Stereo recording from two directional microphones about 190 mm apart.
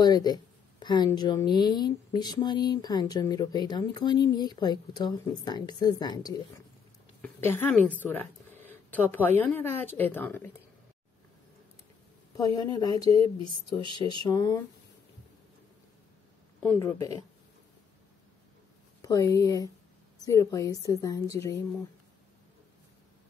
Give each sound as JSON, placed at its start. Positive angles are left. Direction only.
{"t": 0.0, "sound": "speech", "side_deg": 20}
{"t": 8.6, "sound": "a sound", "side_deg": 10}
{"t": 9.4, "sound": "a woman's voice", "side_deg": 10}
{"t": 12.4, "sound": "speech", "side_deg": 20}
{"t": 14.2, "sound": "speech", "side_deg": 20}
{"t": 16.6, "sound": "a woman's voice", "side_deg": 15}
{"t": 18.9, "sound": "a woman's voice", "side_deg": 20}